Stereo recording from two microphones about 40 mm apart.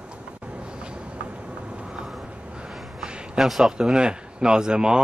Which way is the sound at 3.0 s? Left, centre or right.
Right.